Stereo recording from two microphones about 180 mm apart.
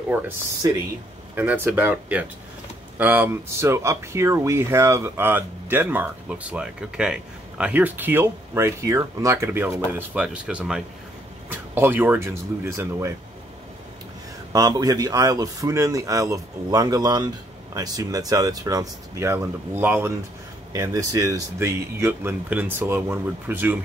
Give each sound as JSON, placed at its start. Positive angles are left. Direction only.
{"t": 0.6, "sound": "speech", "side_deg": -20}
{"t": 1.3, "sound": "speech", "side_deg": -10}
{"t": 14.5, "sound": "speech", "side_deg": -20}